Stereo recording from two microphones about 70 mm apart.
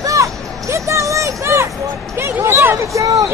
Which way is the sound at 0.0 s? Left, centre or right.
Right.